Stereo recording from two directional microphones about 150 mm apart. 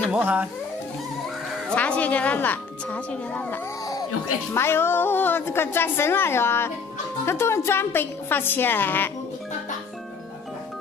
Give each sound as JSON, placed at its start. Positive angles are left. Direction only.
{"t": 0.1, "sound": "speech", "side_deg": -10}
{"t": 1.8, "sound": "a woman's voice", "side_deg": 10}